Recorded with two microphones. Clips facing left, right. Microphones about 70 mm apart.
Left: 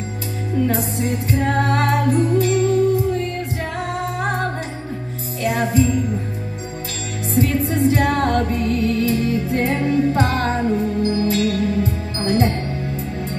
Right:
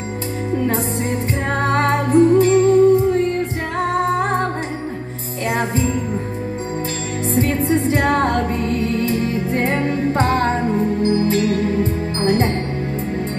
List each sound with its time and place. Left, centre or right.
1.3 s music: right
5.4 s jingle bell: right
7.3 s music: right